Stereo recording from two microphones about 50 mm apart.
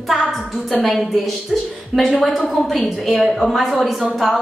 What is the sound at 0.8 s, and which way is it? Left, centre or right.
A woman's voice, centre.